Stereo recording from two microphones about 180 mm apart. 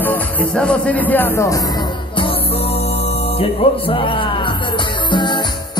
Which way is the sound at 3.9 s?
30° left (ahead or behind).